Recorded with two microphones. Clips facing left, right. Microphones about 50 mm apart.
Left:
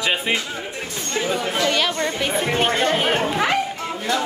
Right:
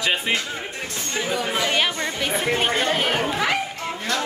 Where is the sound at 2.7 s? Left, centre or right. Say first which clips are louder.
Left 2 dB; centre.